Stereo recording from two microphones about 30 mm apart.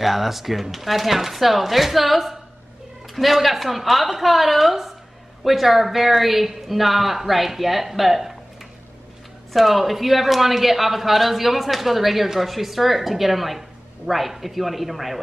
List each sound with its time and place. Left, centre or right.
0.0 s speech: centre
9.5 s speech: centre